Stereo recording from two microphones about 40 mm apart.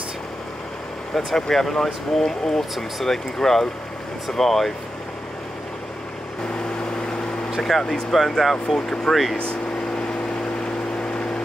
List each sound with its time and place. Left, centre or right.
1.1 s speech: centre
2.7 s speech: centre
7.6 s speech: centre
8.7 s speech: centre
9.1 s speech: centre